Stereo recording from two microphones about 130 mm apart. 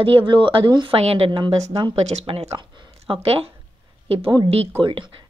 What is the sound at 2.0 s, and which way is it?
A woman's voice, 55° right (ahead or behind).